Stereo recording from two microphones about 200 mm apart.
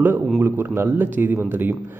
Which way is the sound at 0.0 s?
10° right (ahead or behind).